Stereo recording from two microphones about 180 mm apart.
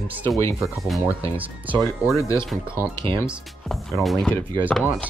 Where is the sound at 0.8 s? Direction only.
Centre (ahead or behind).